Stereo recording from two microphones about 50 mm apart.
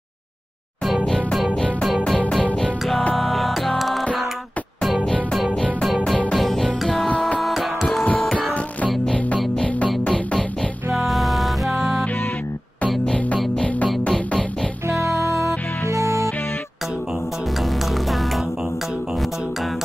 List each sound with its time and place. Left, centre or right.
1.0 s music: centre
3.2 s music: centre
5.5 s music: centre
6.3 s music: centre
7.1 s music: left
7.3 s music: centre
8.0 s music: left
10.0 s music: centre
11.1 s music: centre
14.0 s music: left
14.9 s music: right
17.6 s music: centre